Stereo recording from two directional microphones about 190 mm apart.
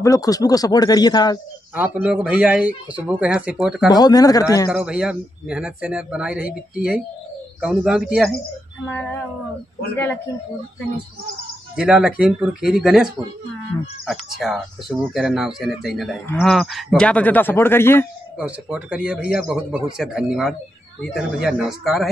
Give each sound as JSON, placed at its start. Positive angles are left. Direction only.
{"t": 0.0, "sound": "speech", "side_deg": 20}
{"t": 1.8, "sound": "speech", "side_deg": -5}
{"t": 3.9, "sound": "speech", "side_deg": 20}
{"t": 4.7, "sound": "speech", "side_deg": -5}
{"t": 11.7, "sound": "speech", "side_deg": -5}
{"t": 18.4, "sound": "speech", "side_deg": -5}